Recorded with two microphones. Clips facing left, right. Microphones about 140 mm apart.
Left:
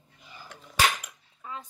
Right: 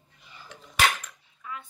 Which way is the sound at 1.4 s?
35° left (ahead or behind).